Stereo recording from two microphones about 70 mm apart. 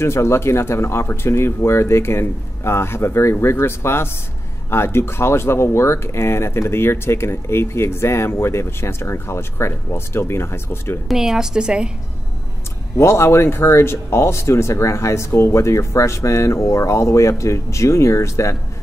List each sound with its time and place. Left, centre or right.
0.0 s speech: left
11.1 s a woman's voice: centre
12.9 s speech: left